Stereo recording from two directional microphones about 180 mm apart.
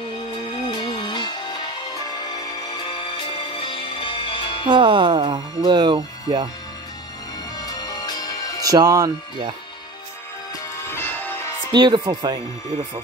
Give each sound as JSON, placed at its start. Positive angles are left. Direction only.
{"t": 0.7, "sound": "music", "side_deg": 25}
{"t": 4.6, "sound": "speech", "side_deg": -25}
{"t": 7.5, "sound": "music", "side_deg": 20}
{"t": 8.6, "sound": "speech", "side_deg": -20}
{"t": 10.5, "sound": "music", "side_deg": 15}
{"t": 11.7, "sound": "speech", "side_deg": -25}